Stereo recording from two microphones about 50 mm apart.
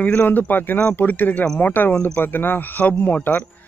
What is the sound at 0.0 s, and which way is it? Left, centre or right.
A man's voice, left.